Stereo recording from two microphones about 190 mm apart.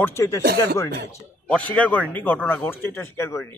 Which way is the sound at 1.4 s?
5° left (ahead or behind).